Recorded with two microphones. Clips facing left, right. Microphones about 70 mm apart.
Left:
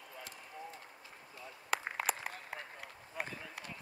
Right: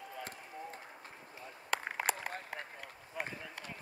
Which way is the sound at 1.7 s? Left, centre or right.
Centre.